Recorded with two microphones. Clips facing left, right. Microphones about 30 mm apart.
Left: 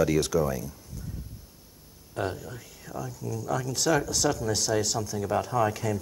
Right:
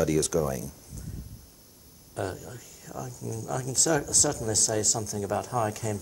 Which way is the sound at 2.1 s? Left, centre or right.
Centre.